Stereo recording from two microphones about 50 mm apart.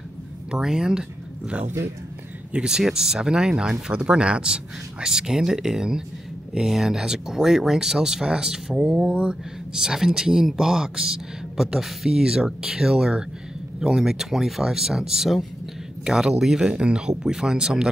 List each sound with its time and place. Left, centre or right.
0.5 s speech: centre
2.5 s speech: centre